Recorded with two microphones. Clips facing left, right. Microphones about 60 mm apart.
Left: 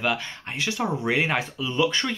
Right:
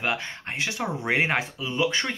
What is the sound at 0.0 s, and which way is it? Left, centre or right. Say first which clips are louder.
Speech: left 2 dB; right.